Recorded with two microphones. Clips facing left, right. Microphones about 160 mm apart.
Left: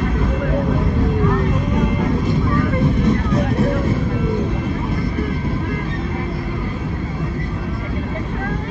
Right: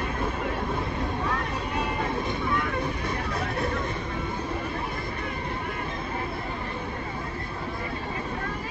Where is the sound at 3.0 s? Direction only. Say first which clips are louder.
Left 12 dB; 80° left.